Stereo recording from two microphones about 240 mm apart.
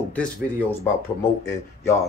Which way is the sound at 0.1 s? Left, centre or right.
Centre.